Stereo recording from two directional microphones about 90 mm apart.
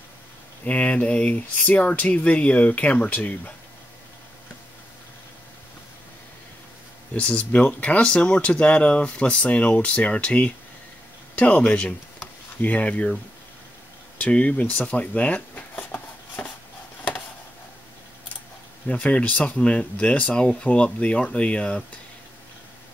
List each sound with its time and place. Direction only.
0.7 s speech: 15° left (ahead or behind)
7.2 s speech: 15° left (ahead or behind)
14.1 s speech: 15° left (ahead or behind)
18.9 s speech: 15° left (ahead or behind)